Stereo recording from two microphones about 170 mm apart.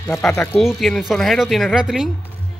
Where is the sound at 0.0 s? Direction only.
5° left (ahead or behind).